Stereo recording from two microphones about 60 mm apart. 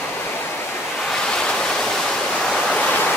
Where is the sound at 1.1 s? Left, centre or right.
Centre.